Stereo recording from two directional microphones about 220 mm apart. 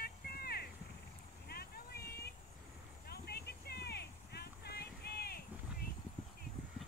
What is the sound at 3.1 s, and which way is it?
Clip-clop, 45° left (ahead or behind).